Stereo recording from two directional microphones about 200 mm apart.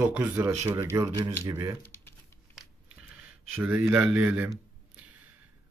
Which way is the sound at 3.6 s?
5° right (ahead or behind).